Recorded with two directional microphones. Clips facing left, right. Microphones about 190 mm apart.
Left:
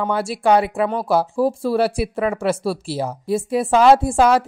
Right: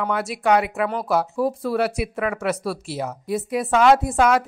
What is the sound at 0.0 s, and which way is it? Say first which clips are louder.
Speech: left 3 dB; 30° left (ahead or behind).